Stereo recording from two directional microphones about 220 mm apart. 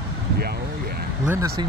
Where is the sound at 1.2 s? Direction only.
10° right (ahead or behind).